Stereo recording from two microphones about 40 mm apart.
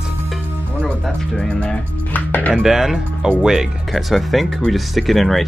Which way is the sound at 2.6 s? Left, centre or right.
Centre.